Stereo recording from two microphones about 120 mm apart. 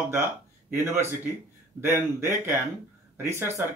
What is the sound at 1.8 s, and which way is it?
Speech, 20° right (ahead or behind).